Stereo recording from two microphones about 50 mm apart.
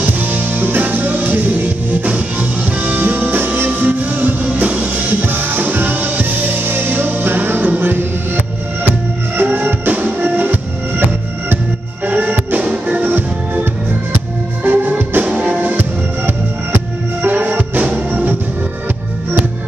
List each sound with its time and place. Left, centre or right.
0.0 s music: right
9.4 s music: right
14.6 s music: right
15.7 s music: right